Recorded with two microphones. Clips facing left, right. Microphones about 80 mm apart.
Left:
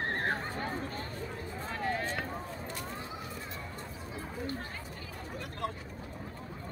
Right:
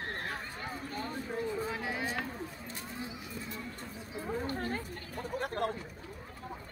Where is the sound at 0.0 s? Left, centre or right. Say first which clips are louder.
Left 6 dB; left.